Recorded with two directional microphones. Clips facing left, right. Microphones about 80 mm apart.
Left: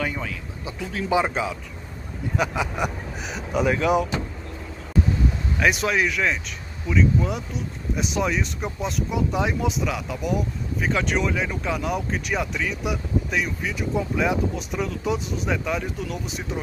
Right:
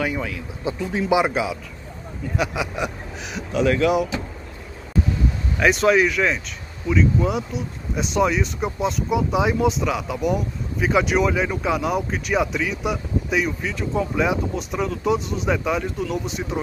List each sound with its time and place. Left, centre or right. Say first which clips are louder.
0.0 s speech: right 3 dB; centre
0.7 s speech: right 9 dB; right
1.1 s speech: right 2 dB; centre
5.6 s speech: right 5 dB; centre